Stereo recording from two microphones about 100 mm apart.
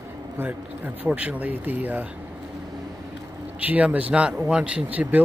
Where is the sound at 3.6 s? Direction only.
15° right (ahead or behind).